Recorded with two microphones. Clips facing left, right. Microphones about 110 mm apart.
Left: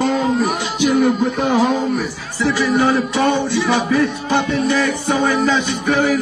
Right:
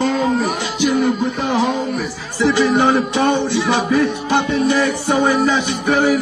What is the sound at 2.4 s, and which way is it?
Music, 20° right (ahead or behind).